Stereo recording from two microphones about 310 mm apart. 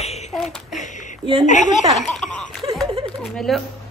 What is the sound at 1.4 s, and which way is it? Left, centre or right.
Speech, left.